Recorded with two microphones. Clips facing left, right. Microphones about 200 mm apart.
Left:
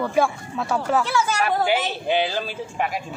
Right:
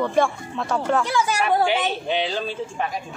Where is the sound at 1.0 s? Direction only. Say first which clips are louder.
Even; 15° right (ahead or behind).